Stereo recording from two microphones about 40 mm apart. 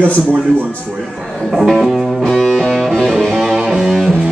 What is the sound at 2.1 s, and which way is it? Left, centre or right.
Music, centre.